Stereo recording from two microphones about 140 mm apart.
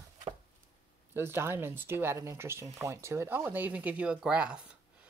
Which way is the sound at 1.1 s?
15° right (ahead or behind).